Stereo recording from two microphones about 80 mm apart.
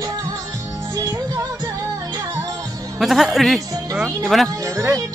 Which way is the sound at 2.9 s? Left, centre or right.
Centre.